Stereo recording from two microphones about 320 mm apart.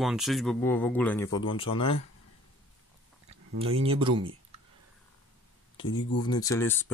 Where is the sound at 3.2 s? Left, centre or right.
Centre.